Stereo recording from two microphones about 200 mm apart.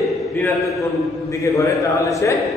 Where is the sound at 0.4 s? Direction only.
15° left (ahead or behind).